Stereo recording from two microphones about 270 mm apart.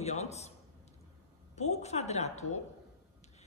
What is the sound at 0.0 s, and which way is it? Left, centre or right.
Speech, left.